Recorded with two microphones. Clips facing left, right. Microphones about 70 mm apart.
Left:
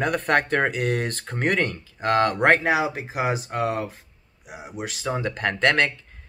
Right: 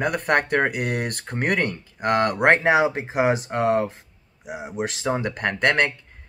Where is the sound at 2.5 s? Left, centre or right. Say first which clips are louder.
Right 3 dB; right.